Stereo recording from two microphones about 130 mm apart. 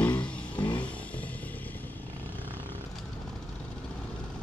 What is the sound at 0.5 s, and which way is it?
Vehicle, 40° left (ahead or behind).